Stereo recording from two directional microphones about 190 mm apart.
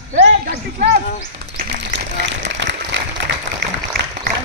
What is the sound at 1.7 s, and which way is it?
Applause, 65° right (ahead or behind).